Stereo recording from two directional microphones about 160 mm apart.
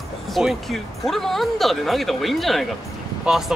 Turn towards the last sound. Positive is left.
turn(degrees=0)  # may be behind; listen again after turning